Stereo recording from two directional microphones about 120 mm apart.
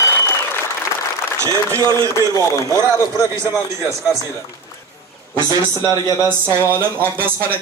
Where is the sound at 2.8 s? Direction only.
20° right (ahead or behind).